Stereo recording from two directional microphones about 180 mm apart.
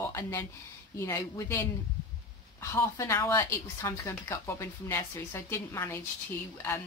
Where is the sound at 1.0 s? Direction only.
15° left (ahead or behind).